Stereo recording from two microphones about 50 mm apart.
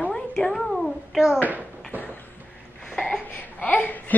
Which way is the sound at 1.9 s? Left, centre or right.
Right.